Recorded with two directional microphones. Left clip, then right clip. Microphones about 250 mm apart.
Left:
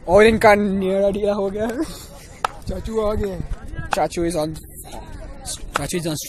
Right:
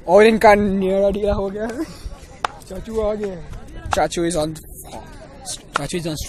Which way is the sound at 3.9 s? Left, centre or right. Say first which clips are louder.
Right 2 dB; centre.